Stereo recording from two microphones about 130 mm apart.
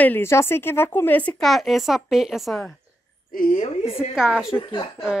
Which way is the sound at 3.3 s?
90° left.